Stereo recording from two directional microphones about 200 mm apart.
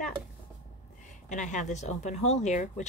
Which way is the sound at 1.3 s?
40° left (ahead or behind).